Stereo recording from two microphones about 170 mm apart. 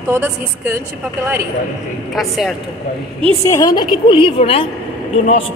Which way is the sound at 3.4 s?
20° left (ahead or behind).